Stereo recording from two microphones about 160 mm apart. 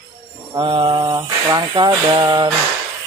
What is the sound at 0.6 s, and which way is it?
Speech, 30° right (ahead or behind).